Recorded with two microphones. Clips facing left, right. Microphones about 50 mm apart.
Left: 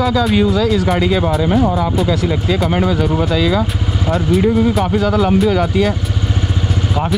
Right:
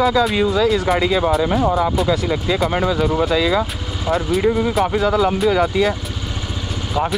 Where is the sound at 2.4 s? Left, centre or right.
Centre.